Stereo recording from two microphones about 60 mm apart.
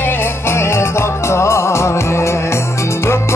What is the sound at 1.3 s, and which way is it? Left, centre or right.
Music, left.